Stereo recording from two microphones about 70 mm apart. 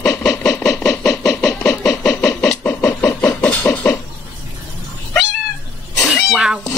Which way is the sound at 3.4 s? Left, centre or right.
Left.